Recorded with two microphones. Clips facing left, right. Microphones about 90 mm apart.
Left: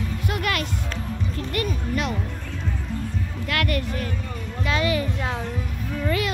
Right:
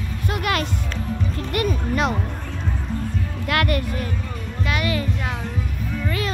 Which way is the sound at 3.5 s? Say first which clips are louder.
Right 4 dB; 25° right (ahead or behind).